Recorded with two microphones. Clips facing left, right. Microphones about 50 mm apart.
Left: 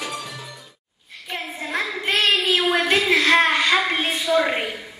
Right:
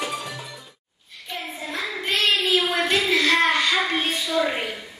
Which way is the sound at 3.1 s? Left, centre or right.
Left.